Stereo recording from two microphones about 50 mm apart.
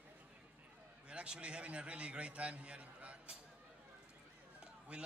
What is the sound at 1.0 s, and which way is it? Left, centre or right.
A man's voice, centre.